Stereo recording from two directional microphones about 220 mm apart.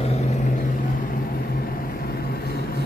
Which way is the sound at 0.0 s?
30° left (ahead or behind).